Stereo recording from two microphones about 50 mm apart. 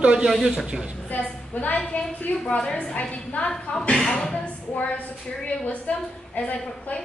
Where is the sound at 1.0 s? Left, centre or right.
Left.